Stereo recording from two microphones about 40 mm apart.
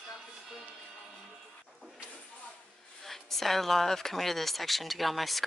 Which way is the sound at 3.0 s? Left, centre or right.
Centre.